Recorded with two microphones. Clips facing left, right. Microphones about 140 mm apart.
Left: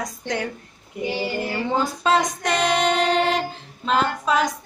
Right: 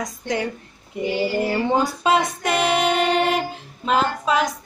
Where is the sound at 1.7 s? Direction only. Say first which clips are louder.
Even; 10° right (ahead or behind).